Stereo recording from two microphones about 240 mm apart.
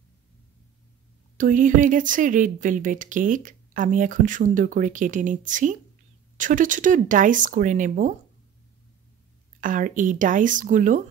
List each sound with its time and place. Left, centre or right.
1.4 s a woman's voice: right
9.6 s a woman's voice: right